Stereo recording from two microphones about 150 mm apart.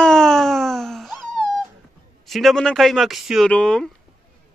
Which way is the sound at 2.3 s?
Centre (ahead or behind).